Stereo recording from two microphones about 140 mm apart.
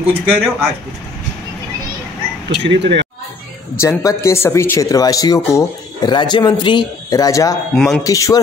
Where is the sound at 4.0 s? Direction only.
20° left (ahead or behind).